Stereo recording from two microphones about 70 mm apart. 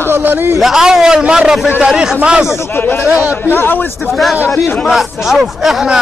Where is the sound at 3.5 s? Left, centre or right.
Left.